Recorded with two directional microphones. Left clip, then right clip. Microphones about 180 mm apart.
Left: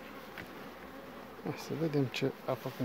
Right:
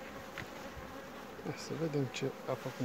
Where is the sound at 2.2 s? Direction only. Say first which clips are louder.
Left 4 dB; 55° left (ahead or behind).